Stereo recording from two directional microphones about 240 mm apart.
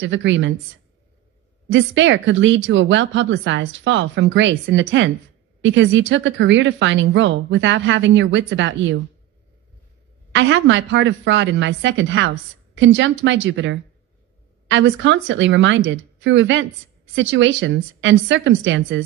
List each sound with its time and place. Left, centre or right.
0.0 s speech: right
1.7 s speech: right
10.3 s speech: right